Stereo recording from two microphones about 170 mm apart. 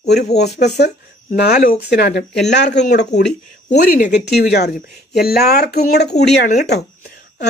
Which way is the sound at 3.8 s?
50° left (ahead or behind).